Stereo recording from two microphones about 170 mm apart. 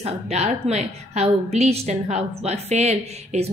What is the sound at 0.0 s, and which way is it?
A woman's voice, 40° right (ahead or behind).